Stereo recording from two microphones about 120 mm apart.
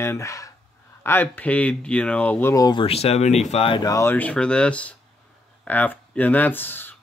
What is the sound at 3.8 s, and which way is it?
Speech, 25° left (ahead or behind).